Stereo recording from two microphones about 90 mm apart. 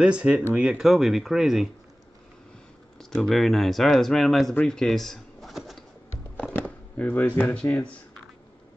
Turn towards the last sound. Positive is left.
turn(degrees=20)  # may be behind; listen again after turning